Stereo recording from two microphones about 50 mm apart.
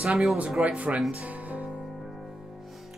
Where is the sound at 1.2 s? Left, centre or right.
Right.